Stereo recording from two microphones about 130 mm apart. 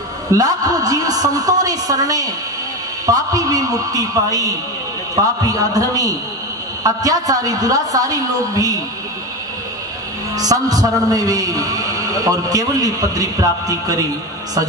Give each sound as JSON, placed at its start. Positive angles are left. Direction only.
{"t": 0.4, "sound": "a man's voice", "side_deg": -30}
{"t": 10.3, "sound": "a man's voice", "side_deg": -30}